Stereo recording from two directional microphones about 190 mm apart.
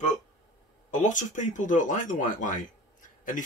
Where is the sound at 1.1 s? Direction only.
40° left (ahead or behind).